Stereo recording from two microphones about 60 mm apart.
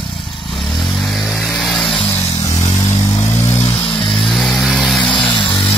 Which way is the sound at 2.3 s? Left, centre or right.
Left.